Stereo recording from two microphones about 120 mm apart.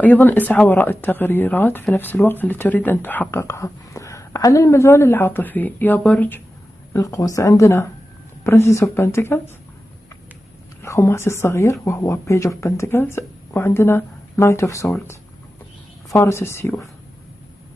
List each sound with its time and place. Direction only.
0.0 s speech: 15° left (ahead or behind)
6.9 s speech: 30° left (ahead or behind)
10.8 s speech: 25° left (ahead or behind)
16.1 s speech: 20° left (ahead or behind)